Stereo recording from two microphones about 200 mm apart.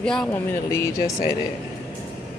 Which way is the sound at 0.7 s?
15° left (ahead or behind).